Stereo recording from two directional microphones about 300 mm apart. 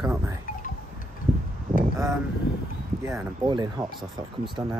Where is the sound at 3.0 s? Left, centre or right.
Centre.